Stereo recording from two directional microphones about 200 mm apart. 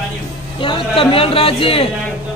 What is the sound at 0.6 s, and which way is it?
A man's voice, 25° left (ahead or behind).